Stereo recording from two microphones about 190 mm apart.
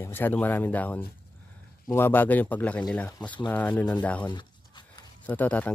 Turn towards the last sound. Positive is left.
turn(degrees=5)  # may be behind; listen again after turning